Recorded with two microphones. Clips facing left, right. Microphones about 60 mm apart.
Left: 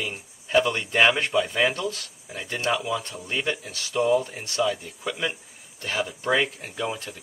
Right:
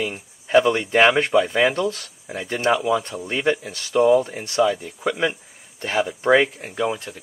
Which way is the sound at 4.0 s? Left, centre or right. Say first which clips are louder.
Right 6 dB; centre.